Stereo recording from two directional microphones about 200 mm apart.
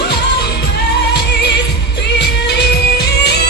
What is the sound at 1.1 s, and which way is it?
Music, 55° left (ahead or behind).